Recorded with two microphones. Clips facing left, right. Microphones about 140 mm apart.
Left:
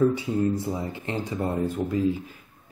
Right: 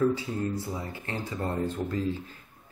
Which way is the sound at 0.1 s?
20° left (ahead or behind).